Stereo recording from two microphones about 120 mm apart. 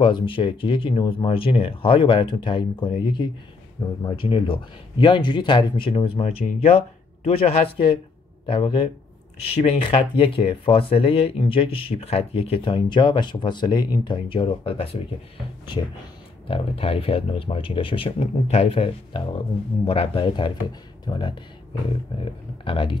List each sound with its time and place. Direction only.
0.0 s speech: 45° left (ahead or behind)
3.8 s speech: 30° left (ahead or behind)
4.2 s speech: 45° left (ahead or behind)
16.4 s speech: 50° left (ahead or behind)